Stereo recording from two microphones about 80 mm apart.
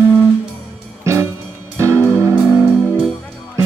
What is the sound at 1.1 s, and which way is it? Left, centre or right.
Music, right.